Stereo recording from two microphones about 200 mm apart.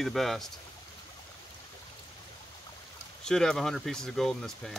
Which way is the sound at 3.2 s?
5° left (ahead or behind).